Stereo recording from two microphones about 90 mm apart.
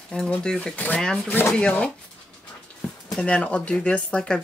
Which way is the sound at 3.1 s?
10° left (ahead or behind).